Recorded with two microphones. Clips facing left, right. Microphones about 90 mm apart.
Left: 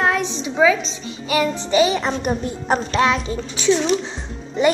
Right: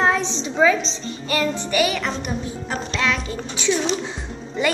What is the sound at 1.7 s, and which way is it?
A woman's voice, 25° left (ahead or behind).